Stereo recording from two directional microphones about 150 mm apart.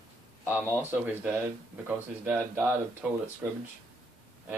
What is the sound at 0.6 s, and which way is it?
Speech, 10° right (ahead or behind).